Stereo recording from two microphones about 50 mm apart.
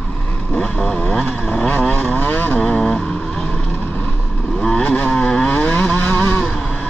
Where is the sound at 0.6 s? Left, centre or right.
Centre.